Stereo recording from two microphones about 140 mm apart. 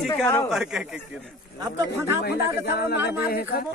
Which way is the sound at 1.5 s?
25° right (ahead or behind).